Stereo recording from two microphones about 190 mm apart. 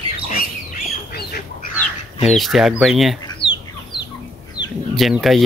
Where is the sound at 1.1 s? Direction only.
50° left (ahead or behind).